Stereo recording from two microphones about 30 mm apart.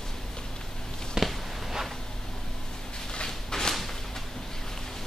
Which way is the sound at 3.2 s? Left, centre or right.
Left.